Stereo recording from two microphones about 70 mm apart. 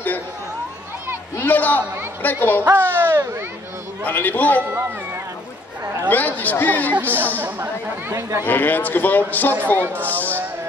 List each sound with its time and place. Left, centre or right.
1.4 s speech: left
2.7 s speech: right
4.0 s speech: left
6.0 s speech: left
7.0 s speech: right
7.6 s speech: right
8.5 s speech: left